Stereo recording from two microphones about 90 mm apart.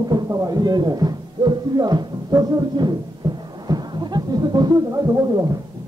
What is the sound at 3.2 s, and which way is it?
Music, 60° right (ahead or behind).